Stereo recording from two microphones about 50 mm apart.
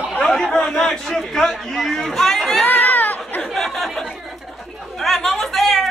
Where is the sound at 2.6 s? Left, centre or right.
Left.